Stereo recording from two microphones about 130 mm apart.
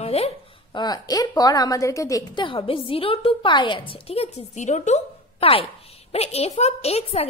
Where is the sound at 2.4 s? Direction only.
40° left (ahead or behind).